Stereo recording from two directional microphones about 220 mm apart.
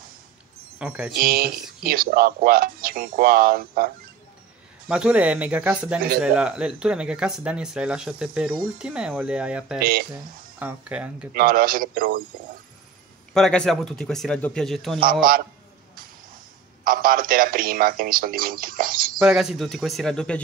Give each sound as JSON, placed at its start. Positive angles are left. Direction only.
{"t": 0.7, "sound": "speech", "side_deg": -5}
{"t": 1.1, "sound": "speech", "side_deg": -40}
{"t": 4.8, "sound": "speech", "side_deg": -5}
{"t": 9.8, "sound": "speech", "side_deg": -40}
{"t": 10.6, "sound": "speech", "side_deg": -5}
{"t": 11.3, "sound": "speech", "side_deg": -40}
{"t": 13.3, "sound": "speech", "side_deg": 5}
{"t": 15.0, "sound": "speech", "side_deg": -40}
{"t": 16.8, "sound": "speech", "side_deg": -40}
{"t": 19.1, "sound": "speech", "side_deg": -5}